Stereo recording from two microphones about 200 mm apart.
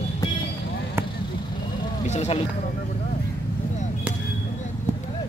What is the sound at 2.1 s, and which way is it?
Speech, 35° left (ahead or behind).